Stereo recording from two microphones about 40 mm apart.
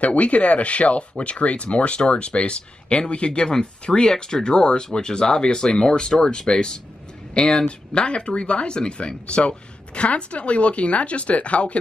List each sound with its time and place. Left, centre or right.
0.0 s speech: left